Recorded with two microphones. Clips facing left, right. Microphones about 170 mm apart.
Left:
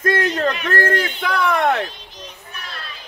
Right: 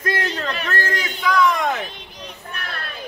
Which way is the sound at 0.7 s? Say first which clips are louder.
Left 5 dB; 55° left (ahead or behind).